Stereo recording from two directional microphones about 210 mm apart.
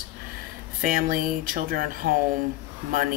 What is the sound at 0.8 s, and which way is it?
Speech, 40° right (ahead or behind).